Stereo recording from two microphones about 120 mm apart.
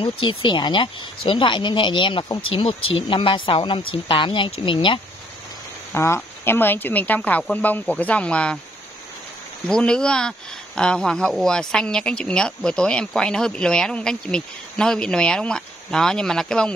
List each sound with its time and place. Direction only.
0.0 s speech: 45° left (ahead or behind)
5.9 s speech: 20° left (ahead or behind)
9.7 s speech: 5° left (ahead or behind)